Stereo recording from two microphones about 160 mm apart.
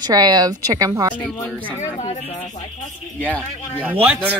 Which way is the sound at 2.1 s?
45° left (ahead or behind).